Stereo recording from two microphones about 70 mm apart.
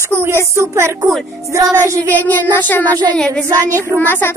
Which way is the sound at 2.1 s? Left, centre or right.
Left.